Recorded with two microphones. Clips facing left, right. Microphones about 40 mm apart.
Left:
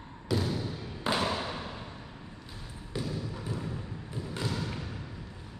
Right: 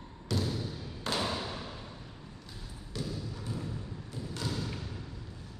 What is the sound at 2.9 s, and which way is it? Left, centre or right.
Trickle, left.